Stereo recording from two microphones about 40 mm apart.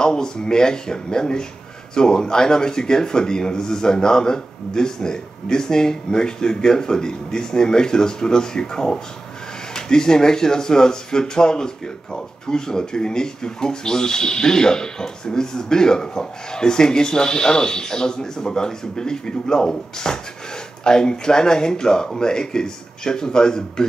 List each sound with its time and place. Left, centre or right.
0.0 s speech: centre